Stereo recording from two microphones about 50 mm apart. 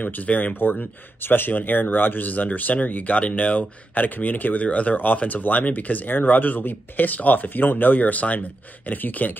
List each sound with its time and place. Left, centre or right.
0.0 s speech: left
0.6 s speech: left